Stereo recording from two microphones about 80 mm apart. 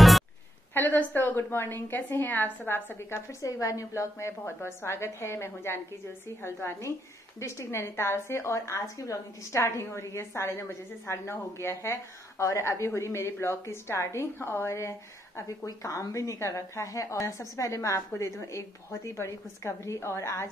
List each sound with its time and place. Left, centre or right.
0.7 s a woman's voice: left